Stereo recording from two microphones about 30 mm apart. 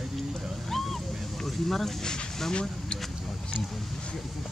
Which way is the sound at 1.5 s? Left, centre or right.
Centre.